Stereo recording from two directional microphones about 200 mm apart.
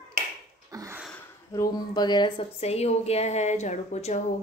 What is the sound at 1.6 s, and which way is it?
A woman's voice, 20° left (ahead or behind).